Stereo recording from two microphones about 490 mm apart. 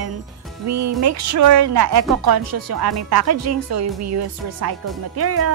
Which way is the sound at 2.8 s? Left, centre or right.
Right.